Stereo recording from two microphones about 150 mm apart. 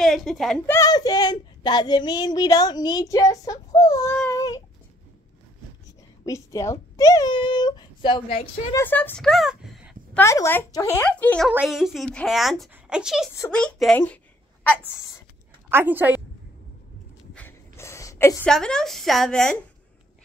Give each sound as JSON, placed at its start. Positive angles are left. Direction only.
{"t": 0.0, "sound": "speech", "side_deg": 0}
{"t": 0.7, "sound": "speech", "side_deg": 20}
{"t": 4.3, "sound": "a sound", "side_deg": 25}
{"t": 6.2, "sound": "speech", "side_deg": 20}
{"t": 8.7, "sound": "speech", "side_deg": 15}
{"t": 10.1, "sound": "speech", "side_deg": 20}
{"t": 11.5, "sound": "a woman's voice", "side_deg": 0}
{"t": 13.9, "sound": "a sound", "side_deg": 10}
{"t": 15.7, "sound": "a woman's voice", "side_deg": -15}
{"t": 17.3, "sound": "a sound", "side_deg": 10}
{"t": 18.5, "sound": "a woman's voice", "side_deg": 5}